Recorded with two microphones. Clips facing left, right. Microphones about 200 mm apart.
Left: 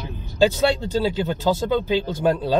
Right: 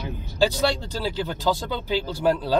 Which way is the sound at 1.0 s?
20° left (ahead or behind).